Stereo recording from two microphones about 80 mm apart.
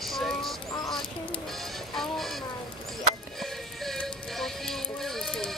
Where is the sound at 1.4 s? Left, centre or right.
Centre.